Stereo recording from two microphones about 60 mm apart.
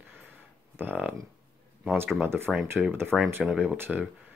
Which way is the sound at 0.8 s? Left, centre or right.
Right.